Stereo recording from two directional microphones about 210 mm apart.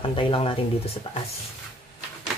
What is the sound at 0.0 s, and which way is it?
Speech, 25° left (ahead or behind).